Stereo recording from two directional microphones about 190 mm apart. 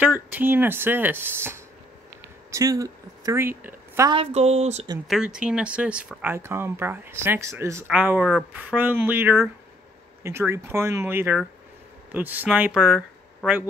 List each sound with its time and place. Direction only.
0.0 s speech: 10° right (ahead or behind)
4.1 s a woman's voice: 30° right (ahead or behind)
5.0 s speech: 5° right (ahead or behind)